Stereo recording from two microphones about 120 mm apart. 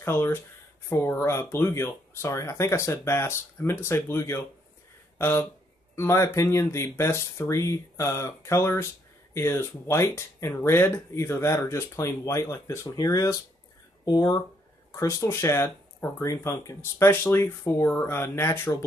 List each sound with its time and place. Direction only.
0.0 s speech: 20° left (ahead or behind)